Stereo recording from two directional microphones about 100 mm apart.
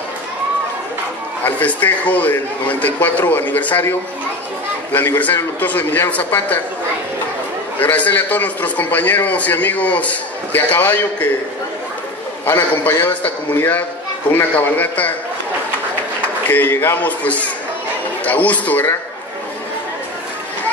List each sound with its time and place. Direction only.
1.4 s a man's voice: 15° left (ahead or behind)
4.9 s a man's voice: 20° left (ahead or behind)
7.8 s a man's voice: 15° left (ahead or behind)
12.4 s a man's voice: 20° left (ahead or behind)
16.4 s a man's voice: 20° left (ahead or behind)